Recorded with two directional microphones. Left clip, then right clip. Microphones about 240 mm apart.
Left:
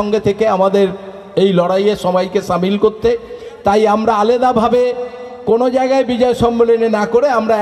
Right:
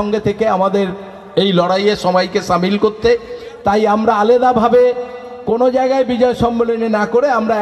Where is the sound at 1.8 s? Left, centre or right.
Left.